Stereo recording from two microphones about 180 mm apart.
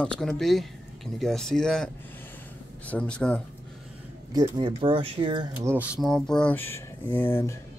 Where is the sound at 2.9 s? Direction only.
5° left (ahead or behind).